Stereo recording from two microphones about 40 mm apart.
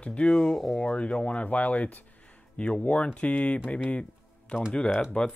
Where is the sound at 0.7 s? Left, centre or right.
Left.